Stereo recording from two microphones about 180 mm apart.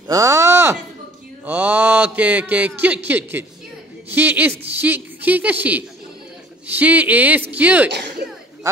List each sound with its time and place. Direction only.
0.1 s speech: 15° right (ahead or behind)
1.4 s mantra: 10° right (ahead or behind)